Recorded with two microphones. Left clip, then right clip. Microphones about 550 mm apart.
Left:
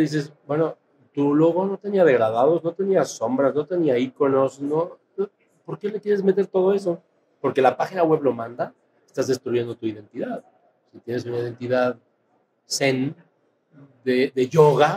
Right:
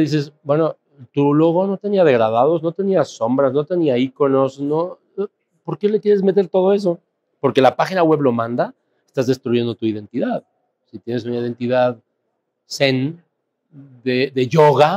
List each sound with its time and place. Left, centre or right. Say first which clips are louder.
0.0 s speech: right 4 dB; right
7.5 s speech: right 5 dB; right
14.0 s speech: right 2 dB; right